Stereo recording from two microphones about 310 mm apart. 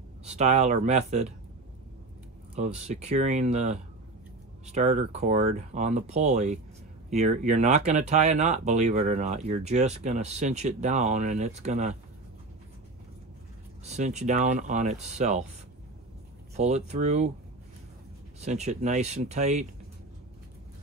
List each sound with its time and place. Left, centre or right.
0.2 s speech: right
2.5 s speech: right
13.8 s speech: right
16.5 s speech: right
18.4 s speech: right